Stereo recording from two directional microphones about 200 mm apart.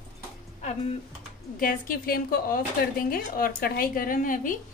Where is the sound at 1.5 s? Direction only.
45° left (ahead or behind).